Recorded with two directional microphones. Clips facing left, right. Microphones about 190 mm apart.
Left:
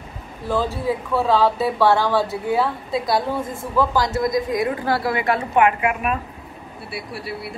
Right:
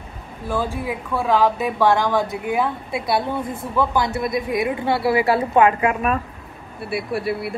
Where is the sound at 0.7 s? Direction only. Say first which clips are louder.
Left 3 dB; 15° right (ahead or behind).